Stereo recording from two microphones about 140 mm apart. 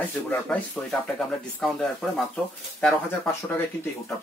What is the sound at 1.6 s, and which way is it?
Speech, 5° left (ahead or behind).